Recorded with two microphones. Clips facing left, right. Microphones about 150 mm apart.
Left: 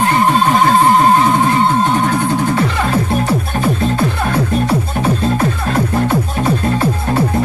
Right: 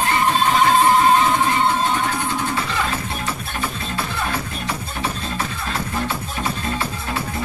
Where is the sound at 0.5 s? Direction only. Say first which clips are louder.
Left 2 dB; 45° left (ahead or behind).